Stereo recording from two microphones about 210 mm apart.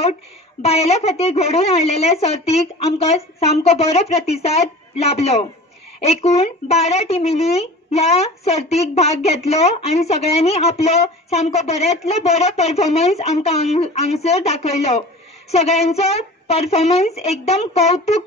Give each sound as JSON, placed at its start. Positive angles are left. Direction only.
{"t": 0.6, "sound": "a woman's voice", "side_deg": 30}